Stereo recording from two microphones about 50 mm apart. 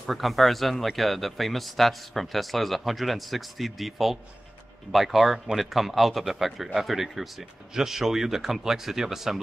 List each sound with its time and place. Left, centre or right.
0.0 s speech: centre